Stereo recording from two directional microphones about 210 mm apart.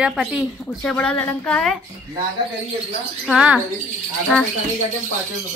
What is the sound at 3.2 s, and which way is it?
Speech, 5° right (ahead or behind).